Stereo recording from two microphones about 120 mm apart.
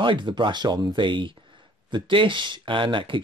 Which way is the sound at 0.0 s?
40° right (ahead or behind).